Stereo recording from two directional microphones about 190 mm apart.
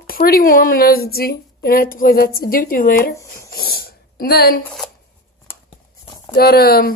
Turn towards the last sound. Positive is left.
turn(degrees=55)  # may be behind; listen again after turning